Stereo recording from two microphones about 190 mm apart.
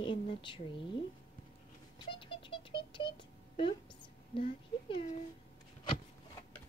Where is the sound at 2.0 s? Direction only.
25° left (ahead or behind).